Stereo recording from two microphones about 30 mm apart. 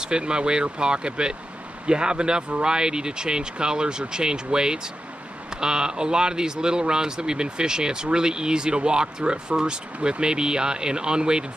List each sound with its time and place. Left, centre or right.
0.0 s speech: right